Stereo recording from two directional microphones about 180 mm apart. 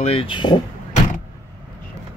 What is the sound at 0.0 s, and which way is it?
Speech, 35° left (ahead or behind).